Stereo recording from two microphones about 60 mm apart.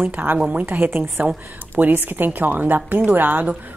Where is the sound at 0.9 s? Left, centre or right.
Right.